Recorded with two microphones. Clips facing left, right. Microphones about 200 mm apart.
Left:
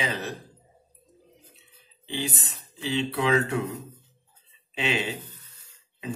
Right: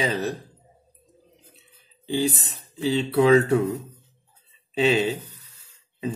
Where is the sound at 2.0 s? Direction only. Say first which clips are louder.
Right 8 dB; 40° right (ahead or behind).